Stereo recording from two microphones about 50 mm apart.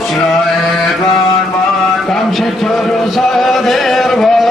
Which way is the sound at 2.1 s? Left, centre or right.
Centre.